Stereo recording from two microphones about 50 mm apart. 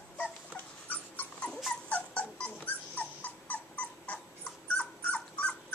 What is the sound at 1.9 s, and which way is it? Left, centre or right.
Dog, left.